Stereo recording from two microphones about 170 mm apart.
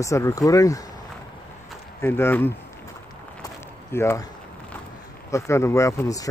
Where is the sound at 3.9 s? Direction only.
15° left (ahead or behind).